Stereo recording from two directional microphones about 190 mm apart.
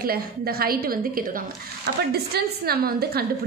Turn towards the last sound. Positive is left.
turn(degrees=-55)  # may be behind; listen again after turning